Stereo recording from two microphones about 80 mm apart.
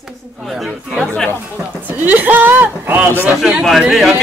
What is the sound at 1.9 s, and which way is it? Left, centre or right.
Speech, right.